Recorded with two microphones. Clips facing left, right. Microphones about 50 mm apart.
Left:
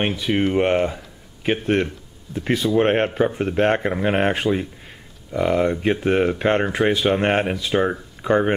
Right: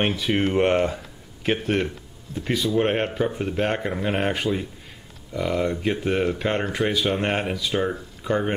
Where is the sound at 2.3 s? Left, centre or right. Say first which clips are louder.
Left 4 dB; left.